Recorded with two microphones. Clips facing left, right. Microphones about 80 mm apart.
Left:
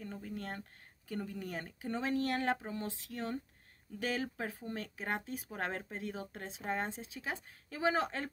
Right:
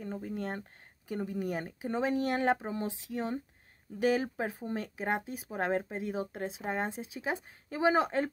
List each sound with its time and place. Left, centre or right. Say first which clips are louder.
0.0 s speech: right 6 dB; right